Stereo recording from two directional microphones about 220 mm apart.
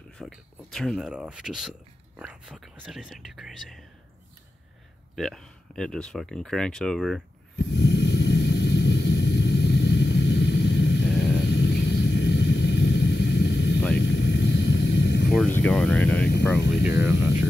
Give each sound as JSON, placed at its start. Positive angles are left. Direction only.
{"t": 0.2, "sound": "speech", "side_deg": 0}
{"t": 5.1, "sound": "speech", "side_deg": 0}
{"t": 7.5, "sound": "a sound", "side_deg": 50}
{"t": 11.3, "sound": "vehicle", "side_deg": 50}
{"t": 15.2, "sound": "a sound", "side_deg": 5}
{"t": 16.8, "sound": "speech", "side_deg": -10}